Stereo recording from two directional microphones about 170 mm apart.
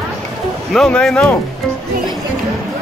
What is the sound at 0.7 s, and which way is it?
Speech, 5° left (ahead or behind).